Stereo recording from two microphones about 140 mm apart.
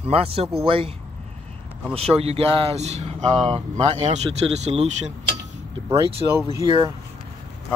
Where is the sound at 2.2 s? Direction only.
45° right (ahead or behind).